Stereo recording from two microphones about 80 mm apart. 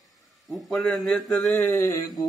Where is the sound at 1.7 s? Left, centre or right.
Left.